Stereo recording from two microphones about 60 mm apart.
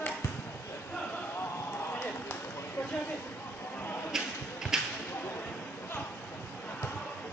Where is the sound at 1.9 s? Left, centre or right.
Left.